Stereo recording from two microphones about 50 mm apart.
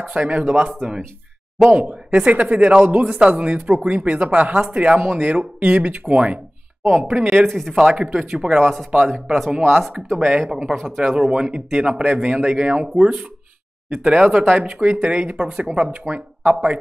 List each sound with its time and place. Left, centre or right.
0.0 s speech: centre
7.1 s speech: centre
8.0 s speech: centre
9.0 s speech: centre
10.2 s speech: right
11.0 s speech: centre
12.0 s speech: right
14.0 s speech: right
14.7 s speech: centre